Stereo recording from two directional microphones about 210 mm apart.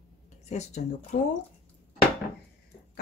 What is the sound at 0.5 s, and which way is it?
Speech, 35° left (ahead or behind).